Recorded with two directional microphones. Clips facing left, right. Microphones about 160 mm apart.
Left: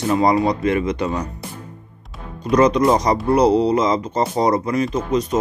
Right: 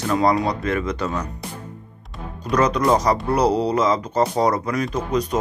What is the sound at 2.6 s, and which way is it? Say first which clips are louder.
Speech: left 3 dB; 10° left (ahead or behind).